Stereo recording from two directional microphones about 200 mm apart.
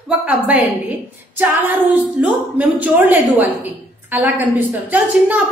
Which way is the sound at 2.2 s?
5° right (ahead or behind).